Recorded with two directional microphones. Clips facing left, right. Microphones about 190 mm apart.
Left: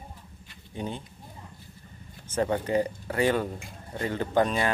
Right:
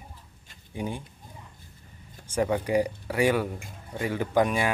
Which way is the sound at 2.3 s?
10° right (ahead or behind).